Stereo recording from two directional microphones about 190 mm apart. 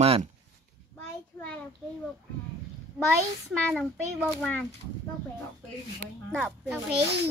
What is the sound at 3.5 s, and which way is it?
Speech, 5° left (ahead or behind).